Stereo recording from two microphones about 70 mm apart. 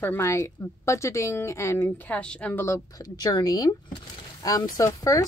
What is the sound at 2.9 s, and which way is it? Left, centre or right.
Speech, left.